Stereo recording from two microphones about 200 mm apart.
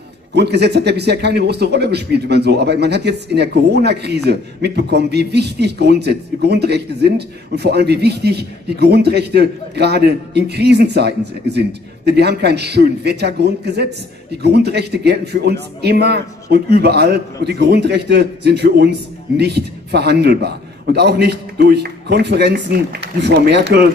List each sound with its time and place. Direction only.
0.3 s speech: 55° right (ahead or behind)